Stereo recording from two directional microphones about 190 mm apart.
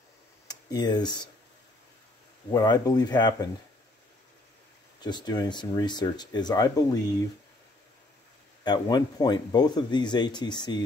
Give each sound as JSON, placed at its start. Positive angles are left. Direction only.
{"t": 0.5, "sound": "speech", "side_deg": 20}
{"t": 2.5, "sound": "speech", "side_deg": 20}
{"t": 5.0, "sound": "speech", "side_deg": 20}
{"t": 8.6, "sound": "speech", "side_deg": 20}